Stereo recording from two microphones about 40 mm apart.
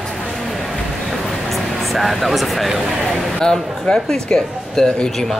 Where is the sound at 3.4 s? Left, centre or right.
Centre.